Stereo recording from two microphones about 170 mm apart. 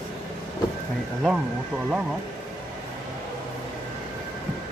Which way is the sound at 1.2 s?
5° right (ahead or behind).